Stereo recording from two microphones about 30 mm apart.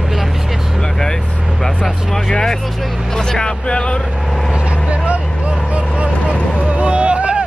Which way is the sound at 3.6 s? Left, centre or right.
Left.